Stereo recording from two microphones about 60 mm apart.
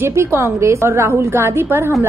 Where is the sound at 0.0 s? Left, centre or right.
Right.